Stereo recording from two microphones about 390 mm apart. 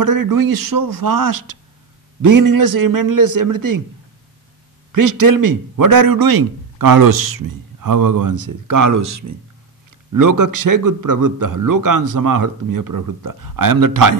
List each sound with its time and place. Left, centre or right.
0.0 s a man's voice: right
4.9 s a man's voice: right